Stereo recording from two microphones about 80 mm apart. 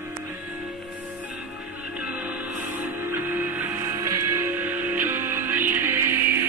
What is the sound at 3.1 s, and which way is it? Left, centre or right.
Music, right.